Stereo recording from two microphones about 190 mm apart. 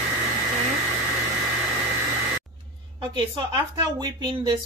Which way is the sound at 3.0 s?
20° right (ahead or behind).